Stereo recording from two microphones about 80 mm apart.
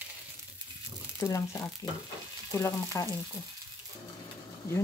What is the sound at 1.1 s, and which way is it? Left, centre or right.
Speech, left.